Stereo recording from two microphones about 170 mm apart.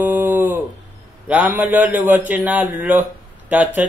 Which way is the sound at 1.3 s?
10° right (ahead or behind).